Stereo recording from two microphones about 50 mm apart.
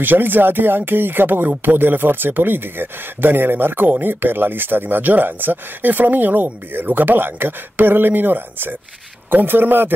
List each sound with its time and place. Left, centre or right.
0.0 s a man's voice: right